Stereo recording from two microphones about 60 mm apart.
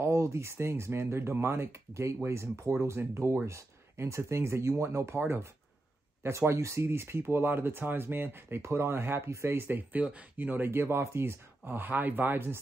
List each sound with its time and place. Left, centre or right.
0.0 s speech: right